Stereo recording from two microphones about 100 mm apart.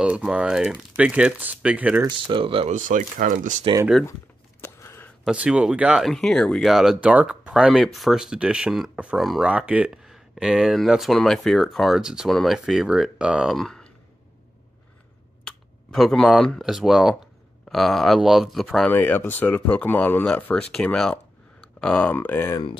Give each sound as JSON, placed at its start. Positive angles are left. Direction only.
{"t": 0.0, "sound": "speech", "side_deg": -10}
{"t": 2.0, "sound": "speech", "side_deg": -60}
{"t": 4.6, "sound": "a sound", "side_deg": 25}
{"t": 5.3, "sound": "speech", "side_deg": -10}
{"t": 6.0, "sound": "speech", "side_deg": 5}
{"t": 15.4, "sound": "speech", "side_deg": 5}
{"t": 18.9, "sound": "speech", "side_deg": 20}
{"t": 20.7, "sound": "a sound", "side_deg": 5}
{"t": 22.1, "sound": "speech", "side_deg": 20}